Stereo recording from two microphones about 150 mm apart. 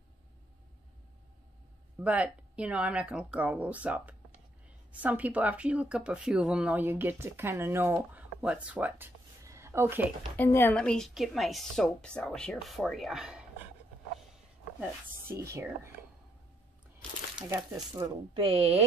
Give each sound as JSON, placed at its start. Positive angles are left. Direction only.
{"t": 2.0, "sound": "speech", "side_deg": -10}
{"t": 10.3, "sound": "a woman's voice", "side_deg": 15}
{"t": 10.8, "sound": "a woman's voice", "side_deg": 5}
{"t": 14.8, "sound": "speech", "side_deg": -15}
{"t": 17.5, "sound": "speech", "side_deg": -25}
{"t": 18.3, "sound": "speech", "side_deg": -40}